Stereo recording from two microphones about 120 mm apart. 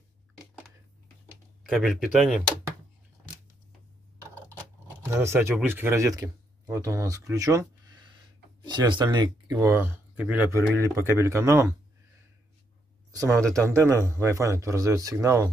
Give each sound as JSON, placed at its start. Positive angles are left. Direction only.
{"t": 1.6, "sound": "speech", "side_deg": 0}
{"t": 5.1, "sound": "speech", "side_deg": -20}
{"t": 8.6, "sound": "speech", "side_deg": -40}
{"t": 9.8, "sound": "a man's voice", "side_deg": -15}
{"t": 13.1, "sound": "a man's voice", "side_deg": -25}